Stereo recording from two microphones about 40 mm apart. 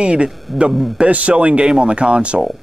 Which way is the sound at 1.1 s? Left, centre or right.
Right.